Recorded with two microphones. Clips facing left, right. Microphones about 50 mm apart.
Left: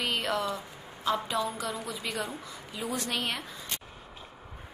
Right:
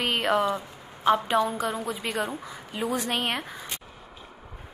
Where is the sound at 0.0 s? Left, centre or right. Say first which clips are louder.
Right 6 dB; right.